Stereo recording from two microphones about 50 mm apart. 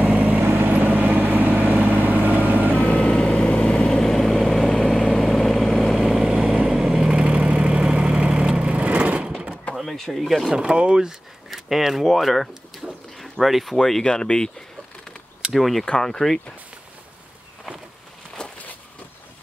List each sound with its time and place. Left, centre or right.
0.4 s vehicle: right
2.7 s vehicle: left
3.0 s vehicle: centre
4.0 s vehicle: centre
5.9 s vehicle: centre
9.8 s door: centre
10.5 s speech: centre
12.8 s a sound: centre
13.2 s speech: centre
15.5 s speech: centre
18.4 s a sound: centre